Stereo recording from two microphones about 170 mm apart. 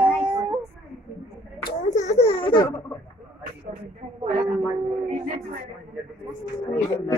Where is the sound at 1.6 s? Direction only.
45° left (ahead or behind).